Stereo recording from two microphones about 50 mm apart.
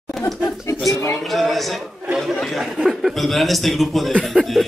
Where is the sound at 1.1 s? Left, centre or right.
Centre.